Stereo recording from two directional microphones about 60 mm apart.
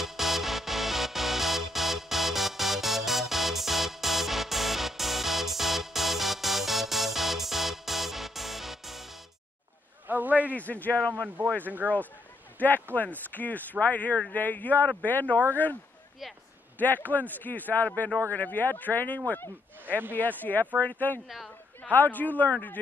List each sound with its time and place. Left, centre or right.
0.0 s music: centre
10.0 s a man's voice: right
10.5 s a man's voice: left
11.6 s speech: right
12.5 s a man's voice: left